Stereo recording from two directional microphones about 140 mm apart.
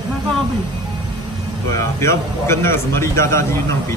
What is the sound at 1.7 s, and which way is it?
A man's voice, 20° left (ahead or behind).